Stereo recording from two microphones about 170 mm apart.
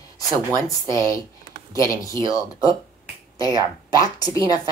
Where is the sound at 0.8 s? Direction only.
20° left (ahead or behind).